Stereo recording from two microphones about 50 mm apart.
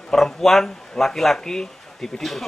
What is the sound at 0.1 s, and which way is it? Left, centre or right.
Speech, centre.